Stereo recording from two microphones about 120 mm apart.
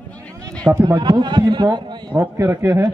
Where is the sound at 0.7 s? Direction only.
15° right (ahead or behind).